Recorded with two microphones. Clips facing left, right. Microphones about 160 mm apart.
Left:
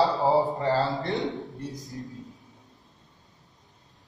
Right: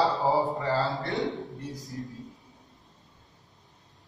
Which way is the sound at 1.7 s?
20° left (ahead or behind).